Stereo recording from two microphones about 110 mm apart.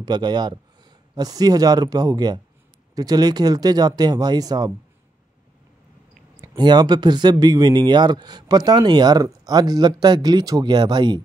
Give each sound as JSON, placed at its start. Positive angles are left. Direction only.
{"t": 0.0, "sound": "speech", "side_deg": -40}
{"t": 6.5, "sound": "speech", "side_deg": -40}